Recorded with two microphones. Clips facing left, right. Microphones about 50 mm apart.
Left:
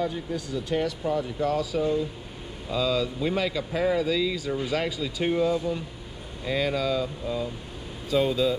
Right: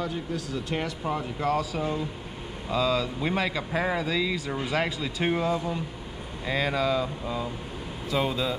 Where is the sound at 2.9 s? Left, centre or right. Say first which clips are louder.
Left 1 dB; centre.